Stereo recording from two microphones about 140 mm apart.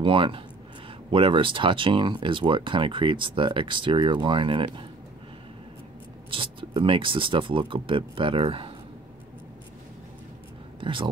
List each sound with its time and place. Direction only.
0.0 s speech: 40° right (ahead or behind)
6.3 s speech: 40° right (ahead or behind)
10.8 s speech: 40° right (ahead or behind)